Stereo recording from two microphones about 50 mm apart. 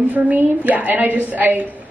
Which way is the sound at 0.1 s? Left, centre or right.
Right.